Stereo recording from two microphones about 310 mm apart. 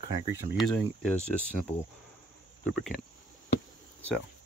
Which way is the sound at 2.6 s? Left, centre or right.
Centre.